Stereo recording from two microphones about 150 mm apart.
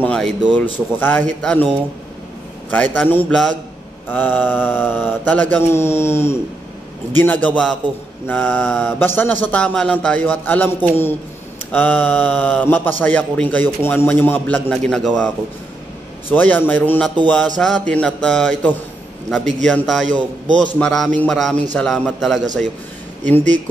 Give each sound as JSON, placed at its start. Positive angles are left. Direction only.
{"t": 0.0, "sound": "speech", "side_deg": 5}
{"t": 2.7, "sound": "speech", "side_deg": 10}
{"t": 20.1, "sound": "a man's voice", "side_deg": -55}
{"t": 20.8, "sound": "speech", "side_deg": 5}